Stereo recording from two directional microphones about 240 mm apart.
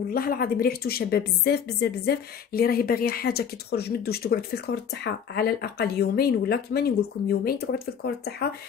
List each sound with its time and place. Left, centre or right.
0.1 s a woman's voice: left